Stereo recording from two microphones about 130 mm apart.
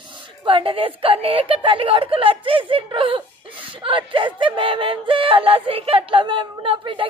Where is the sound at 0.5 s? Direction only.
45° right (ahead or behind).